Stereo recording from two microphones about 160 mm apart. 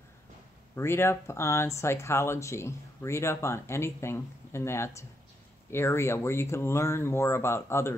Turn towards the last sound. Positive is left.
turn(degrees=15)  # may be behind; listen again after turning